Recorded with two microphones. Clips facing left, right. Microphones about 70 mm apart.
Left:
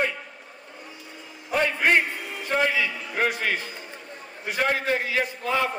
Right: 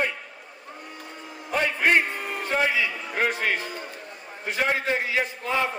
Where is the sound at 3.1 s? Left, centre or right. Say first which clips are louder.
Even; centre.